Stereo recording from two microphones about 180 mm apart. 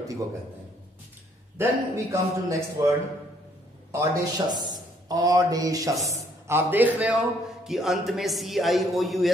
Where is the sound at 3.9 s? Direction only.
15° right (ahead or behind).